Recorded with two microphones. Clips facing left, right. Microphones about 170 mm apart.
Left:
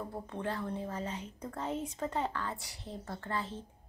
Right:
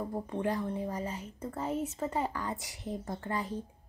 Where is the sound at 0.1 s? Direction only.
15° right (ahead or behind).